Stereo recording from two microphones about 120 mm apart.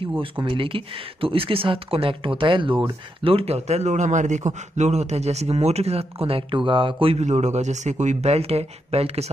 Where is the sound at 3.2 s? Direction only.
55° right (ahead or behind).